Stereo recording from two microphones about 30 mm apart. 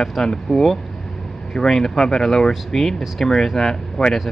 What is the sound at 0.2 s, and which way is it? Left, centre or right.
Speech, centre.